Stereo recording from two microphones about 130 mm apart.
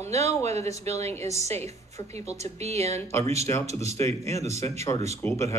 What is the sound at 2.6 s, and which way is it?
Speech, 55° right (ahead or behind).